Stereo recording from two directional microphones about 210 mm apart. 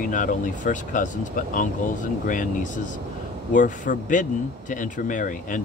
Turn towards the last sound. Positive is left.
turn(degrees=40)  # may be behind; listen again after turning